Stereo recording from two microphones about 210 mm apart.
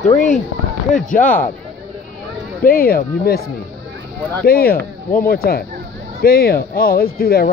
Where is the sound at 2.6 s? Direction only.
45° left (ahead or behind).